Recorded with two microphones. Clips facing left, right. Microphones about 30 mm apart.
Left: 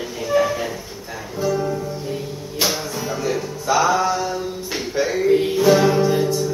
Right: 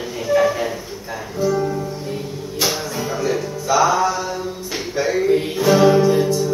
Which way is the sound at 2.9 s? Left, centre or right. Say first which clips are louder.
Right 2 dB; centre.